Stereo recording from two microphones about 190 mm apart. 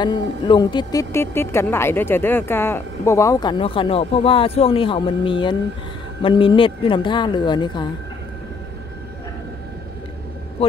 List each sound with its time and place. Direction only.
0.0 s speech: 25° left (ahead or behind)